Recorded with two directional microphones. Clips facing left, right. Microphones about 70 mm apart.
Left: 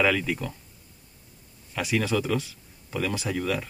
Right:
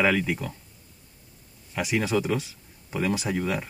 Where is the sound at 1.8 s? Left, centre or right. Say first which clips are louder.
Right 1 dB; centre.